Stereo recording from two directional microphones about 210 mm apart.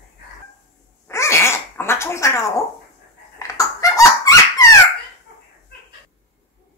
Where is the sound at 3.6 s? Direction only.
15° left (ahead or behind).